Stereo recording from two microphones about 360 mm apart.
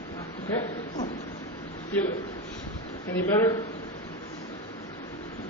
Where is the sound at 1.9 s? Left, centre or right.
Centre.